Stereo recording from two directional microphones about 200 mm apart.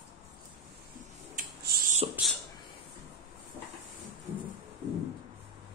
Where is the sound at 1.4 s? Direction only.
40° right (ahead or behind).